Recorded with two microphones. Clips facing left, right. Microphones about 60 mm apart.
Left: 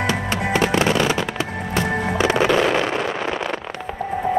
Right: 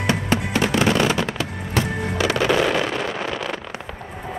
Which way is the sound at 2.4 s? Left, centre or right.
Centre.